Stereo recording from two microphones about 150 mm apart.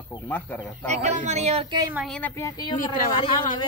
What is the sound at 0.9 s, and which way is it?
Speech, 50° right (ahead or behind).